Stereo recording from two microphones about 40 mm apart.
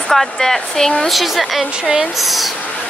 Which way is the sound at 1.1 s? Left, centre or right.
Centre.